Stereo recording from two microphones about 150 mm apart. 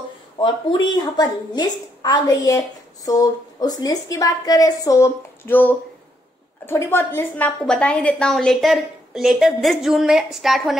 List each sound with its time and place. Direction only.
0.4 s a woman's voice: 30° left (ahead or behind); by 10.8 s centre (ahead or behind)